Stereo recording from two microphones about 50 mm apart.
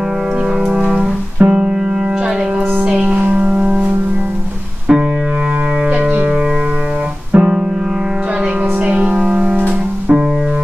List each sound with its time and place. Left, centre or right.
0.7 s music: centre
3.0 s music: right
7.3 s piano: right
8.8 s music: right
9.4 s music: right